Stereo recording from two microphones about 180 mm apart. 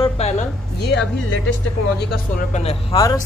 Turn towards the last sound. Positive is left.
turn(degrees=20)  # may be behind; listen again after turning